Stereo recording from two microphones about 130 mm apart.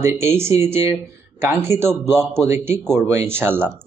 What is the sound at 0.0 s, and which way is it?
Speech, 20° right (ahead or behind).